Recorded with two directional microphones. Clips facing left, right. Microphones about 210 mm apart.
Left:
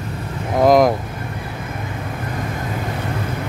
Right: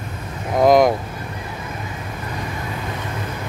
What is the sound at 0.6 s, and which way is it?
Speech, centre (ahead or behind).